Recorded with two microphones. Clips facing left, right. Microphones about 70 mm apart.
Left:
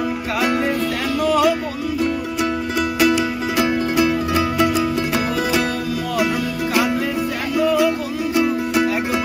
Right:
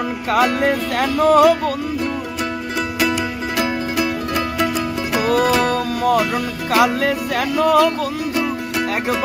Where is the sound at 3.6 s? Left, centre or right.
Centre.